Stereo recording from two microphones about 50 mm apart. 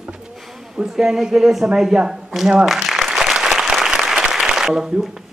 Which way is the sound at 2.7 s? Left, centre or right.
Centre.